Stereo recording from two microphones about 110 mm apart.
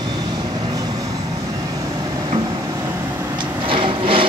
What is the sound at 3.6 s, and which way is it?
Printer, 55° right (ahead or behind).